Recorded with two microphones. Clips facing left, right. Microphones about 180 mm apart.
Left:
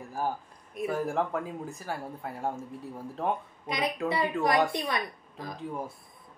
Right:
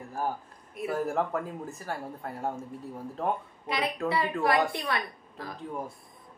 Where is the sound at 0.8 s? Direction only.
Centre (ahead or behind).